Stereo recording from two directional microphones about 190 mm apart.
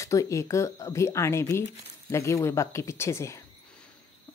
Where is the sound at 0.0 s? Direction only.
15° left (ahead or behind).